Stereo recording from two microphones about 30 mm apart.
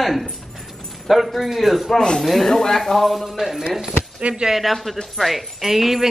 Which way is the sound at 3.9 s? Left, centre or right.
Right.